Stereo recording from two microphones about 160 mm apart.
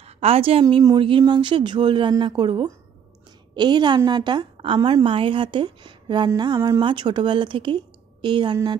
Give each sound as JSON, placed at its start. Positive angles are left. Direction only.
{"t": 0.0, "sound": "a woman's voice", "side_deg": -40}